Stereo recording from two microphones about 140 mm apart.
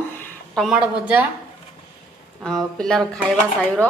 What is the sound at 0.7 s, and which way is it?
Speech, 10° right (ahead or behind).